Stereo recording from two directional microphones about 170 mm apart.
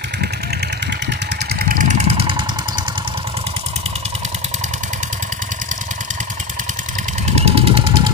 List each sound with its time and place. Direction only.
1.6 s vehicle: 55° right (ahead or behind); by 2.4 s 35° right (ahead or behind)
7.3 s vehicle: 35° right (ahead or behind)